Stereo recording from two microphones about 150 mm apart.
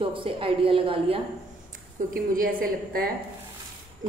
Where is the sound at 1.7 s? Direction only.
65° right (ahead or behind).